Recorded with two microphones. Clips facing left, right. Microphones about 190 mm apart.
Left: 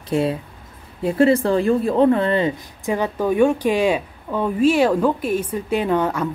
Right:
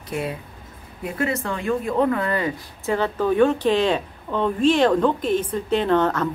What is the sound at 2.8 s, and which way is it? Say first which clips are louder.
Speech: left 1 dB; 15° left (ahead or behind).